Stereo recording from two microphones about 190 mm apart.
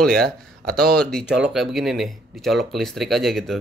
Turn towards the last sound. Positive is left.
turn(degrees=0)  # may be behind; listen again after turning